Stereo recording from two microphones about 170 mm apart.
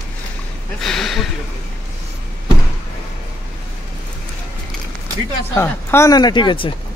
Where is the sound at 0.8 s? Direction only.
Centre (ahead or behind).